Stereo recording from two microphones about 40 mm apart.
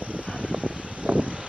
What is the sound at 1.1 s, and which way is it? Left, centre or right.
Vehicle, right.